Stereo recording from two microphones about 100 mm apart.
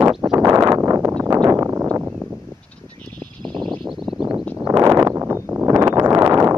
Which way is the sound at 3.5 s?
50° right (ahead or behind).